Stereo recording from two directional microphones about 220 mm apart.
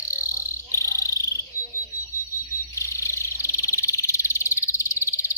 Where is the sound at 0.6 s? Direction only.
15° left (ahead or behind).